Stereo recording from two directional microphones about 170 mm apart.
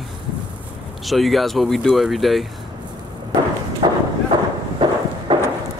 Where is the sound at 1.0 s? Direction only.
Centre (ahead or behind).